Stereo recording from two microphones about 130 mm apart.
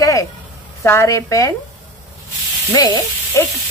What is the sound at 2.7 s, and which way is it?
Speech, 25° left (ahead or behind).